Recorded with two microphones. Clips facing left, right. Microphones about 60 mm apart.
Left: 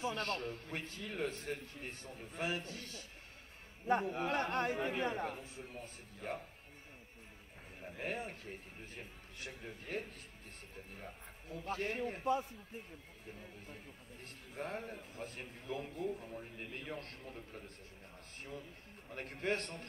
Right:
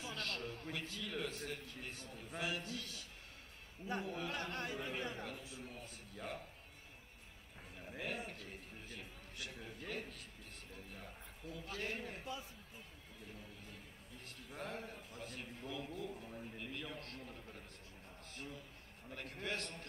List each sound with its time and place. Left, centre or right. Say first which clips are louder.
0.0 s a man's voice: left 6 dB; left
8.0 s a man's voice: left 3 dB; left
13.4 s a sound: left 3 dB; left
14.6 s a man's voice: left 4 dB; left
19.1 s a man's voice: left 6 dB; left